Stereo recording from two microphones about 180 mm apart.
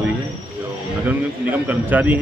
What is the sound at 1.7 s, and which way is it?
Speech, 10° right (ahead or behind).